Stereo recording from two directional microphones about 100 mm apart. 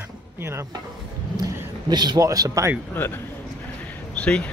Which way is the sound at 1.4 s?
45° right (ahead or behind).